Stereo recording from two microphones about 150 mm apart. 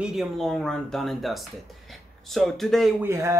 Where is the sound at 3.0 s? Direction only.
20° right (ahead or behind).